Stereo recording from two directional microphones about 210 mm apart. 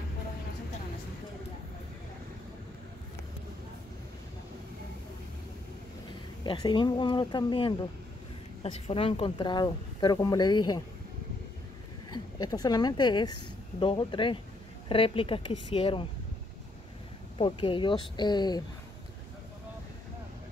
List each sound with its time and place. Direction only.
6.4 s speech: 20° left (ahead or behind)
12.1 s speech: 20° left (ahead or behind)
17.4 s speech: 25° left (ahead or behind)